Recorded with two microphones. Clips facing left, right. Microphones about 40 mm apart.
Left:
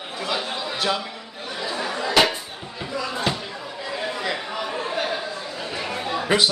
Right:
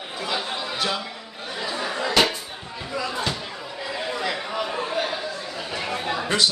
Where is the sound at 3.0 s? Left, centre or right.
Centre.